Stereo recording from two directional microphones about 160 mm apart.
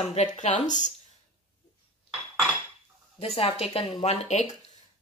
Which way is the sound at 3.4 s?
35° left (ahead or behind).